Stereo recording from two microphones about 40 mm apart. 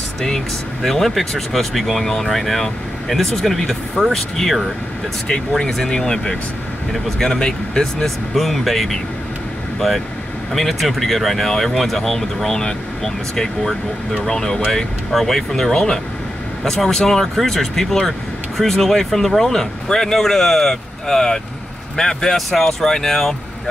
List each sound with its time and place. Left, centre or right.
0.8 s speech: centre
8.4 s speech: centre